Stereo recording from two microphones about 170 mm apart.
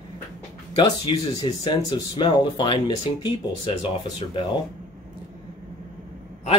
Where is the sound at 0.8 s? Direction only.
25° left (ahead or behind).